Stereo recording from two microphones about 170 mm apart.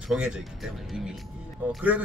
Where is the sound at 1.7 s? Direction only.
5° right (ahead or behind).